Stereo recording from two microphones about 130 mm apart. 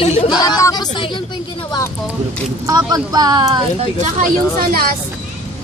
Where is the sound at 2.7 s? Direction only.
30° right (ahead or behind).